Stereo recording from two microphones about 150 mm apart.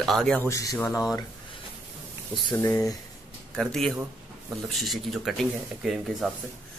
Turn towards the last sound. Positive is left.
turn(degrees=0)  # may be behind; listen again after turning